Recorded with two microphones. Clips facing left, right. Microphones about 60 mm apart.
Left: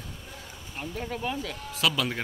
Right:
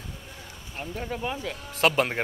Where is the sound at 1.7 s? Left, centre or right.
Right.